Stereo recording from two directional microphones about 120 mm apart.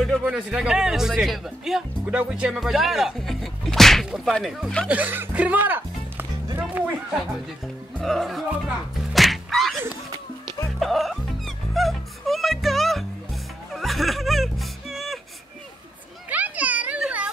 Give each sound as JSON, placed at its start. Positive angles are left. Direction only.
{"t": 0.0, "sound": "speech", "side_deg": 0}
{"t": 4.8, "sound": "speech", "side_deg": -15}
{"t": 7.6, "sound": "speech", "side_deg": 0}
{"t": 9.1, "sound": "music", "side_deg": 0}
{"t": 10.8, "sound": "music", "side_deg": 0}
{"t": 16.3, "sound": "children playing", "side_deg": -15}